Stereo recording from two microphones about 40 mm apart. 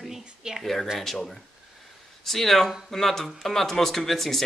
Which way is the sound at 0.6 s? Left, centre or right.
Centre.